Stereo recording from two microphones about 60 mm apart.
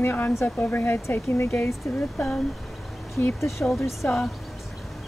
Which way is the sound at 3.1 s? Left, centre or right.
Left.